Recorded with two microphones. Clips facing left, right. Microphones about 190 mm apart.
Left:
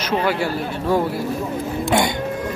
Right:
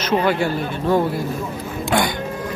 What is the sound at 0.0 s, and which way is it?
Speech, 5° left (ahead or behind).